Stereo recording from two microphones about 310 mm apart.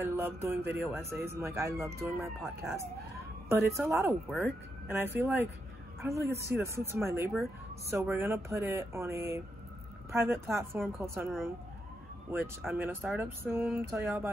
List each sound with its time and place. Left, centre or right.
0.0 s speech: centre